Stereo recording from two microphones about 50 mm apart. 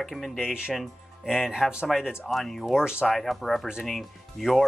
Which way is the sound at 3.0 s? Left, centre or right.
Centre.